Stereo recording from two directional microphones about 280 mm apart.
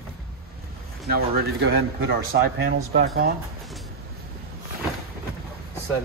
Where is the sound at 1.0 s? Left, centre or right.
Right.